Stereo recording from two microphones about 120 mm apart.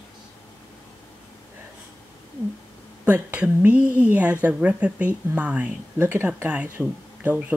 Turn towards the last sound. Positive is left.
turn(degrees=-10)  # may be behind; listen again after turning